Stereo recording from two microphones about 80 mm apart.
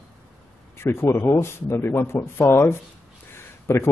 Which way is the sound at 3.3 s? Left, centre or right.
Left.